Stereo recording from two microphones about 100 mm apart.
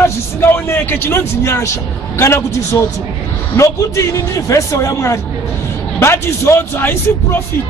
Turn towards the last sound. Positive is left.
turn(degrees=25)  # may be behind; listen again after turning